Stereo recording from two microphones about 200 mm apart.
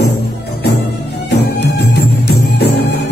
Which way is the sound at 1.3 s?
55° left (ahead or behind).